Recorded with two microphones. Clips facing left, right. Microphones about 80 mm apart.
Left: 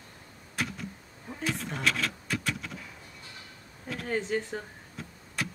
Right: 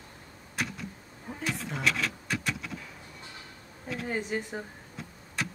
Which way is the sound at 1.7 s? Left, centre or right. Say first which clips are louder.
Even; centre.